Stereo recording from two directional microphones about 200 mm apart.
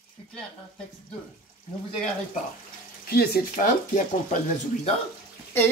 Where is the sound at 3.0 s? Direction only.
50° left (ahead or behind).